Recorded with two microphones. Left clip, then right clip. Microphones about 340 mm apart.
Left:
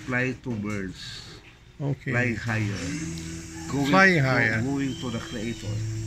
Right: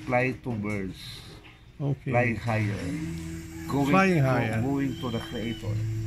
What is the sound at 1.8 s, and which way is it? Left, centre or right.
Speech, centre.